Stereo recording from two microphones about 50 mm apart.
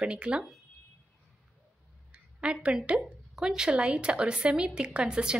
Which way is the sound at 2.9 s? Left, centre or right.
Right.